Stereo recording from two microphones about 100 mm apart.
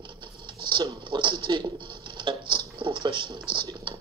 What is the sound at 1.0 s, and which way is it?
Dishes, 55° right (ahead or behind).